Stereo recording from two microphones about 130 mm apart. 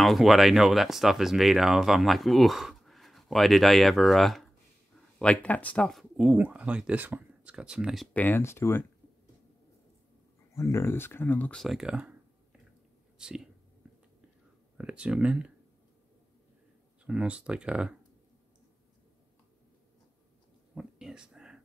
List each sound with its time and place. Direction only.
0.0 s speech: centre (ahead or behind)
6.2 s speech: 10° right (ahead or behind)
8.1 s speech: 15° left (ahead or behind)
10.5 s speech: 20° left (ahead or behind)
11.6 s speech: 5° right (ahead or behind)
13.2 s speech: 5° right (ahead or behind)
14.8 s speech: 10° right (ahead or behind)
17.0 s speech: 10° right (ahead or behind)
20.7 s a sound: 5° right (ahead or behind)